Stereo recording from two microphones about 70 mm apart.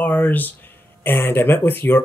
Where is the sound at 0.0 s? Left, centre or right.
Left.